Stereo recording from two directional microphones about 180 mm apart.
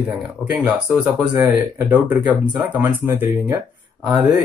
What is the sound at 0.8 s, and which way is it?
Speech, 15° right (ahead or behind).